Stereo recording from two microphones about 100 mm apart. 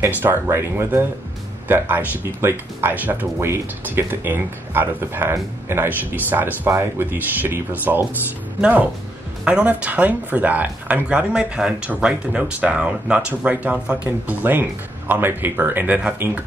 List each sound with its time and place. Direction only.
0.2 s speech: 25° right (ahead or behind)